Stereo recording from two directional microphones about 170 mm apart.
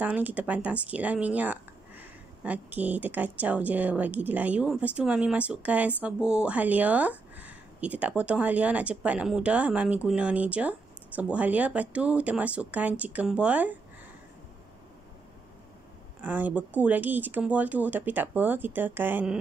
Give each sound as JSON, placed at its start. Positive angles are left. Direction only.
{"t": 0.0, "sound": "speech", "side_deg": -10}
{"t": 16.2, "sound": "speech", "side_deg": -10}